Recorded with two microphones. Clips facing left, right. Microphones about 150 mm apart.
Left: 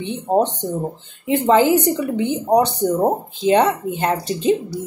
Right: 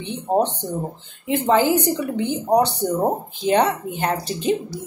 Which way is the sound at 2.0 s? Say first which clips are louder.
Left 3 dB; 20° left (ahead or behind).